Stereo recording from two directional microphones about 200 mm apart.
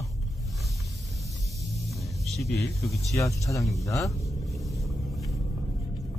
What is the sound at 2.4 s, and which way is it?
Speech, 15° left (ahead or behind).